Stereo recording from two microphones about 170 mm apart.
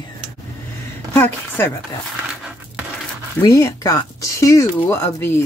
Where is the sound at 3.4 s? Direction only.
20° left (ahead or behind).